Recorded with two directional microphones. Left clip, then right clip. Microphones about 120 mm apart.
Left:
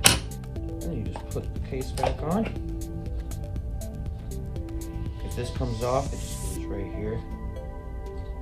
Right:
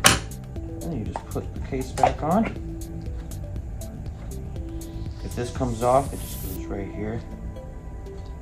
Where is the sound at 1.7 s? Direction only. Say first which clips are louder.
Right 7 dB; 15° left (ahead or behind).